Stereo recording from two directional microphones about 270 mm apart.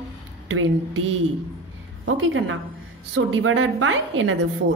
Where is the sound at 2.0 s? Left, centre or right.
Right.